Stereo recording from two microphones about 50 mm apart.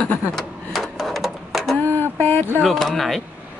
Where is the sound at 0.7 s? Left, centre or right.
Centre.